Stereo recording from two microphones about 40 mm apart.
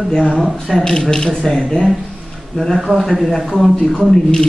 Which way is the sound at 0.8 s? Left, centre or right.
Centre.